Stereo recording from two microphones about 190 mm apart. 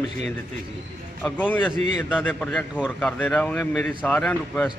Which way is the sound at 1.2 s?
10° left (ahead or behind).